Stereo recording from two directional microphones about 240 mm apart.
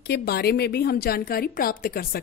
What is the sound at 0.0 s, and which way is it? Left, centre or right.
A woman's voice, left.